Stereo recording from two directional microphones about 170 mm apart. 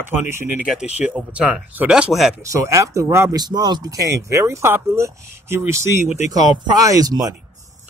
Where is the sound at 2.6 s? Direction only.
15° right (ahead or behind).